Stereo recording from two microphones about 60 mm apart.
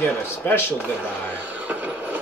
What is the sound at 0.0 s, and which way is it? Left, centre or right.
Speech, left.